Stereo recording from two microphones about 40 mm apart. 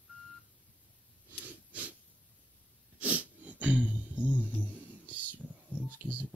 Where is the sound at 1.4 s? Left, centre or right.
Right.